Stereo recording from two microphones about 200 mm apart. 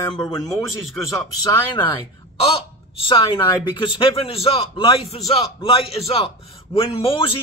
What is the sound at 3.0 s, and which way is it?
A man's voice, 25° left (ahead or behind).